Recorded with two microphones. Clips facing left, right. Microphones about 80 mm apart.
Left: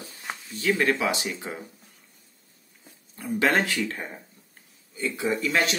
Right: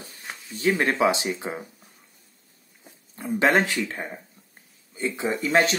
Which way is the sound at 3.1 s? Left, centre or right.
Right.